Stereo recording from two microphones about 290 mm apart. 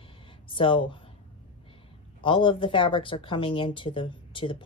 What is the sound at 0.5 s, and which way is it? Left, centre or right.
Speech, centre.